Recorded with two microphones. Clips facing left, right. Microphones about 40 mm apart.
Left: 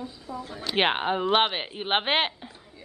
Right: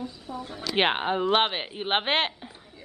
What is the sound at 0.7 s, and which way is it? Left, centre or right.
Speech, centre.